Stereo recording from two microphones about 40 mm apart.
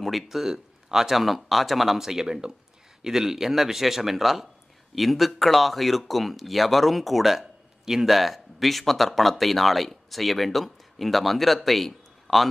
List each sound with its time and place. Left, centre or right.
0.0 s speech: centre